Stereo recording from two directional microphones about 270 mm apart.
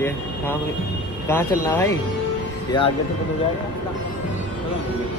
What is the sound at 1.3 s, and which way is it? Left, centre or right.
A man's voice, centre.